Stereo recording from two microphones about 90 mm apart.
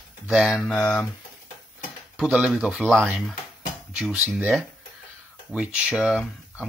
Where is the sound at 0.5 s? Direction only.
10° left (ahead or behind).